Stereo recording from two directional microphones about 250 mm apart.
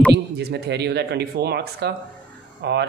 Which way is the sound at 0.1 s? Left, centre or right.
Right.